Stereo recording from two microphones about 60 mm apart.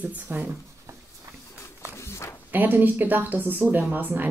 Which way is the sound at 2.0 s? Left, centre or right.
Left.